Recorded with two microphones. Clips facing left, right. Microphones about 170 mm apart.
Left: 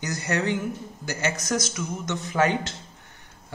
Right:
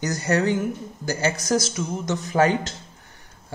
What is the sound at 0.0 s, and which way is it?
Speech, 40° right (ahead or behind).